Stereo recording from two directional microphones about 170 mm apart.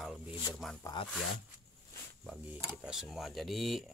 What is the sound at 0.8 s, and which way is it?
Speech, 25° left (ahead or behind).